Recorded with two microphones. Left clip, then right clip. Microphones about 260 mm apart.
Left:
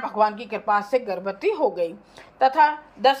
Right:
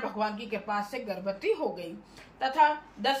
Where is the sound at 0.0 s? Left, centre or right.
Centre.